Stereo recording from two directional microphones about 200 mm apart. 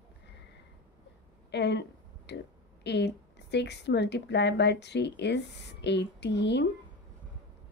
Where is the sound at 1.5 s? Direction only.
60° left (ahead or behind).